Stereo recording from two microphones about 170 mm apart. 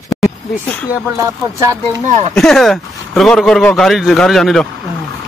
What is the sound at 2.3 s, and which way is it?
A man's voice, centre (ahead or behind).